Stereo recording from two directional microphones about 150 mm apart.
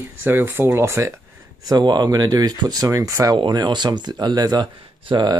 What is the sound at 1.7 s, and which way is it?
Speech, 30° right (ahead or behind).